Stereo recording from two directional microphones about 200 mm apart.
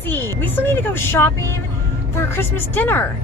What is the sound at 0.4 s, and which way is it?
Speech, 10° left (ahead or behind).